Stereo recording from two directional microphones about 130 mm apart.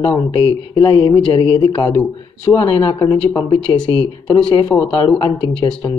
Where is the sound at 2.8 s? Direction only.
30° left (ahead or behind).